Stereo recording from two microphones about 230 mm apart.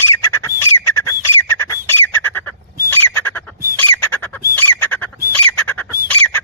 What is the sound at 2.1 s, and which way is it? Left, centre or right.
Bird, centre.